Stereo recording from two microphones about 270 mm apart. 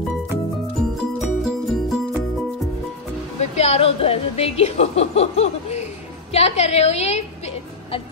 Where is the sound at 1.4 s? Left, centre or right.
Centre.